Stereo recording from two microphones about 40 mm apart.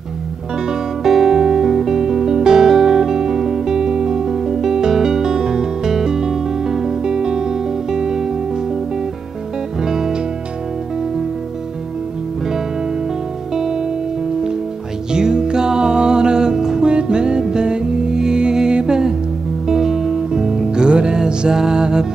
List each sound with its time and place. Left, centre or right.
1.0 s music: centre
9.8 s music: centre
13.6 s music: centre
15.1 s music: centre